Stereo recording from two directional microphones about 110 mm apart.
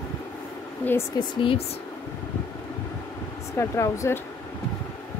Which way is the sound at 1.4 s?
55° left (ahead or behind).